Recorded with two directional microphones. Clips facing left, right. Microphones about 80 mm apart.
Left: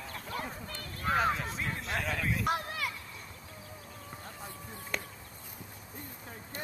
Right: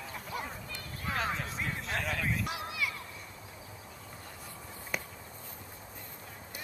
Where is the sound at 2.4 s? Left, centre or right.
Left.